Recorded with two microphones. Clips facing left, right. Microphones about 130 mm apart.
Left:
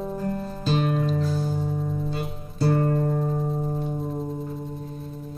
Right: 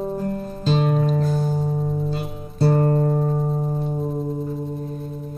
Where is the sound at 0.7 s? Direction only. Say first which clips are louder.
Right 4 dB; 45° right (ahead or behind).